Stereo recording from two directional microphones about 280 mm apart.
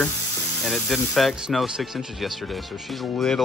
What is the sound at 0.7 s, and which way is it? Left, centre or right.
Speech, centre.